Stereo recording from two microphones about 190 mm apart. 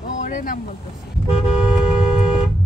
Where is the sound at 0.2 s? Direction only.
45° left (ahead or behind).